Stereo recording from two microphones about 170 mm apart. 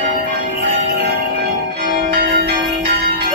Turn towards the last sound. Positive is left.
turn(degrees=-65)  # may be behind; listen again after turning